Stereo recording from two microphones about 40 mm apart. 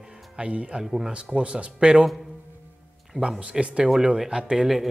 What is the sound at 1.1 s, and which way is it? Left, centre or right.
Speech, right.